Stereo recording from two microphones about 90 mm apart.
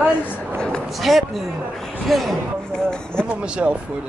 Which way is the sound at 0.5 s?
10° left (ahead or behind).